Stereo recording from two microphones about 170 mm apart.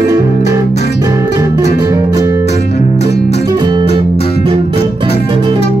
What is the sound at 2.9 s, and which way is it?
Music, 80° left.